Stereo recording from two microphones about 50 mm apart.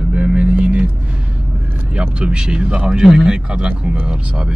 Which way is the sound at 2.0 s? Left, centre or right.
Right.